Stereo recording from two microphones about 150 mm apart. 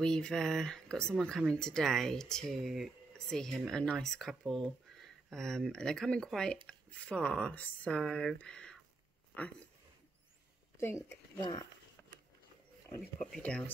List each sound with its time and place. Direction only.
0.0 s speech: 5° left (ahead or behind)
11.1 s speech: 25° left (ahead or behind)
12.0 s a sound: 10° left (ahead or behind)
12.9 s speech: 10° left (ahead or behind)